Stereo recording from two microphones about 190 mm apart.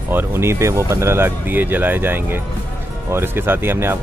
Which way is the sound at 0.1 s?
10° right (ahead or behind).